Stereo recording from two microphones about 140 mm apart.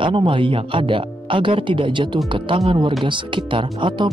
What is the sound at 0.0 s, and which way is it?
Speech, 35° right (ahead or behind).